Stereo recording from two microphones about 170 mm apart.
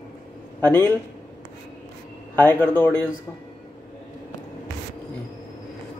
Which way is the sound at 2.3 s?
10° left (ahead or behind).